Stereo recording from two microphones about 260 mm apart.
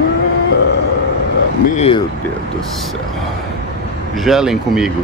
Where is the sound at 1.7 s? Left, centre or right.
Left.